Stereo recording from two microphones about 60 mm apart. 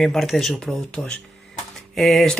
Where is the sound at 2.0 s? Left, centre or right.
Centre.